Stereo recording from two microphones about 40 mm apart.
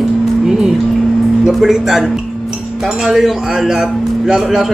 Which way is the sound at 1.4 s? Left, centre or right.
Centre.